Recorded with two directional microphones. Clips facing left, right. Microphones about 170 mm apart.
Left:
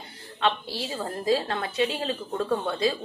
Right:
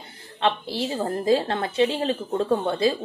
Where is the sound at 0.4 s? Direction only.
25° right (ahead or behind).